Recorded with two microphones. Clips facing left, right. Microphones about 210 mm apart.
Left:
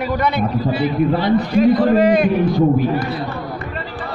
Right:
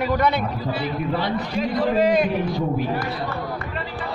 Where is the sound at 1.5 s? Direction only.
55° left (ahead or behind).